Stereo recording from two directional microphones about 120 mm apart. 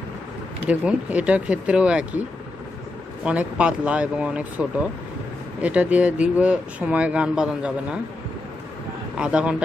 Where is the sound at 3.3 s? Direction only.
10° right (ahead or behind).